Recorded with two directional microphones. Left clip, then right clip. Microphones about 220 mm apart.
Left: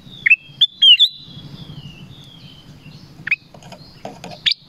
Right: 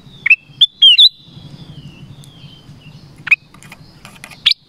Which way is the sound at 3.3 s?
30° right (ahead or behind).